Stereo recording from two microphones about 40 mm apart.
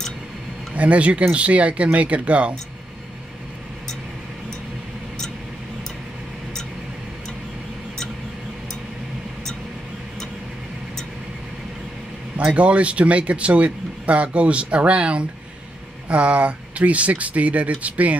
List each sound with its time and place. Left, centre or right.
0.7 s speech: right
12.5 s speech: right